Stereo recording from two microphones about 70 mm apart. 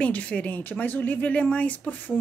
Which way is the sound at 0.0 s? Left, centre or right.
Centre.